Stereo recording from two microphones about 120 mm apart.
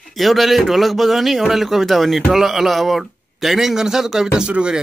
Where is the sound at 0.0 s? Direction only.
Centre (ahead or behind).